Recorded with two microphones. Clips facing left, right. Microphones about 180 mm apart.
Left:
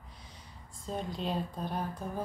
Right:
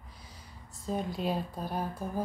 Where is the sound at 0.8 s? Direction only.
5° right (ahead or behind).